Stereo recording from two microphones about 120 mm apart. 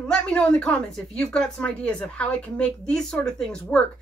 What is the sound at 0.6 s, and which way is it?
Speech, 5° left (ahead or behind).